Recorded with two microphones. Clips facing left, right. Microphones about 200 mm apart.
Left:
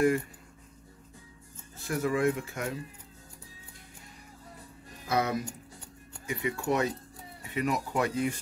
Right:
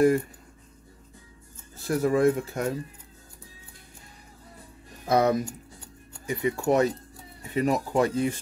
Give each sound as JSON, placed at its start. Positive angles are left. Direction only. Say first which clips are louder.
{"t": 1.9, "sound": "speech", "louder": "right 6 dB", "side_deg": -40}
{"t": 5.0, "sound": "speech", "louder": "right 7 dB", "side_deg": -40}